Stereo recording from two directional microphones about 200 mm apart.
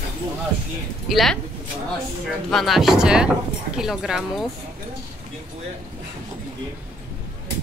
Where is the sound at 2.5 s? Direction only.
Centre (ahead or behind).